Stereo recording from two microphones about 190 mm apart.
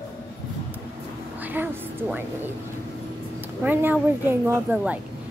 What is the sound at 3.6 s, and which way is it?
Speech, 10° right (ahead or behind).